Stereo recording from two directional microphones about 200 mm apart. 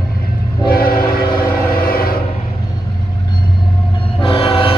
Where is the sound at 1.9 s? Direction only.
50° left (ahead or behind).